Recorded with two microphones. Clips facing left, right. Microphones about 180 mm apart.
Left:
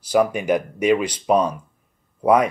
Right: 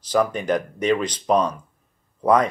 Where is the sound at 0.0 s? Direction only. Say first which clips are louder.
Left 2 dB; 10° left (ahead or behind).